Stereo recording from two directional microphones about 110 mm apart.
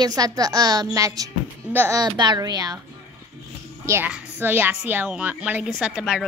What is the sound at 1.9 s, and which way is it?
Speech, 40° right (ahead or behind).